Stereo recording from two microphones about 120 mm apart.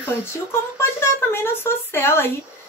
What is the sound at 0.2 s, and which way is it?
A woman's voice, 20° left (ahead or behind).